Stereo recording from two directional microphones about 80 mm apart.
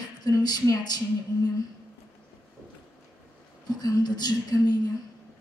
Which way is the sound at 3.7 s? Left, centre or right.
Left.